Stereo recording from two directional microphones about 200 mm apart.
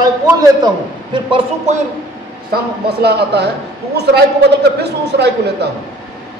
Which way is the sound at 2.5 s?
55° right (ahead or behind).